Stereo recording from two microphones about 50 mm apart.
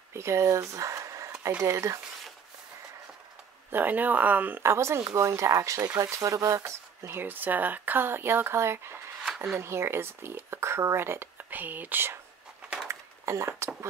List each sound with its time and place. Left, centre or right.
0.1 s speech: right
3.7 s speech: right
4.6 s speech: right
7.1 s speech: right
11.5 s speech: right
12.8 s a sound: right